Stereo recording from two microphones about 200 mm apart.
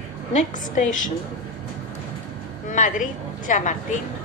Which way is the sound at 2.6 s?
40° left (ahead or behind).